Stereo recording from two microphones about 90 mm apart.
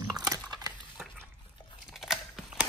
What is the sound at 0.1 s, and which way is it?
Dog, 45° right (ahead or behind).